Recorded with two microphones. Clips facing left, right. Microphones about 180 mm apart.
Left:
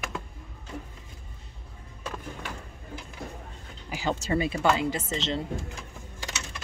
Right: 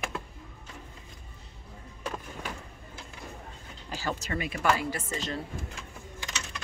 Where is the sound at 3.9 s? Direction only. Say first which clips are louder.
Left 4 dB; 15° left (ahead or behind).